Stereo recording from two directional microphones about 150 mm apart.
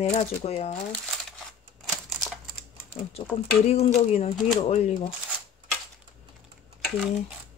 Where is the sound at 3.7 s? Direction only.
50° left (ahead or behind).